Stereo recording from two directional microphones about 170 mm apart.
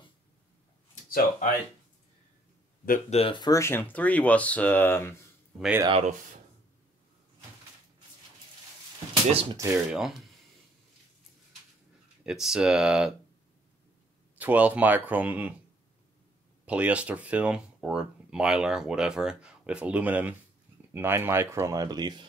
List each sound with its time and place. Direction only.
3.1 s speech: 35° left (ahead or behind); by 5.1 s 15° left (ahead or behind)
5.9 s speech: 35° right (ahead or behind)
9.1 s speech: 25° right (ahead or behind)
9.7 s speech: 5° right (ahead or behind)
12.3 s speech: 5° right (ahead or behind)
14.3 s speech: 10° right (ahead or behind)
16.6 s speech: 10° right (ahead or behind); by 22.2 s 25° right (ahead or behind)